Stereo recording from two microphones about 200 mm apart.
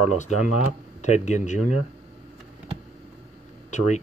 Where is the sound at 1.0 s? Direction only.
35° left (ahead or behind).